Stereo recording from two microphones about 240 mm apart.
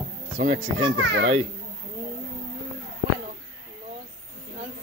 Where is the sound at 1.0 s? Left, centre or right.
Right.